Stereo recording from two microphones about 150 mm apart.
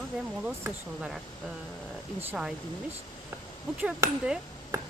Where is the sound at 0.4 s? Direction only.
5° right (ahead or behind).